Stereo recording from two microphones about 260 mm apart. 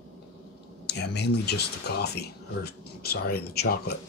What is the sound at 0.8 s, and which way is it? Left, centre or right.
Speech, left.